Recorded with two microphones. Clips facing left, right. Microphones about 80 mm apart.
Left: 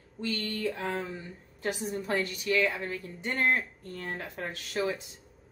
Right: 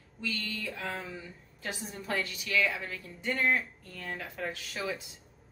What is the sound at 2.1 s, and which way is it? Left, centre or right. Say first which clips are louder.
A woman's voice: left 3 dB; left.